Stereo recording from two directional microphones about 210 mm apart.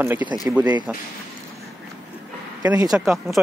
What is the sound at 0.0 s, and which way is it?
Speech, 10° right (ahead or behind).